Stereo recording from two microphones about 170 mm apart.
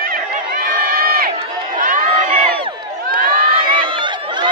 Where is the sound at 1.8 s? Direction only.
50° right (ahead or behind).